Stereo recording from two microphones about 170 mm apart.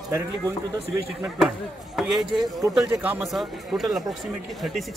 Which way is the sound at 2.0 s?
Centre (ahead or behind).